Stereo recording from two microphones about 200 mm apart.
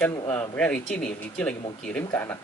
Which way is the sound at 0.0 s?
10° left (ahead or behind).